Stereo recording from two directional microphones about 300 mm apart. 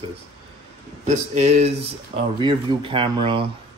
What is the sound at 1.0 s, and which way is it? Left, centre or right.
Speech, right.